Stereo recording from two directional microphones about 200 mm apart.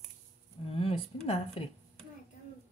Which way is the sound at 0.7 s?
25° left (ahead or behind).